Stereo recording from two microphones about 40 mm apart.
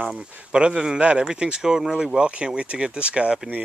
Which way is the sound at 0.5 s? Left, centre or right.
Right.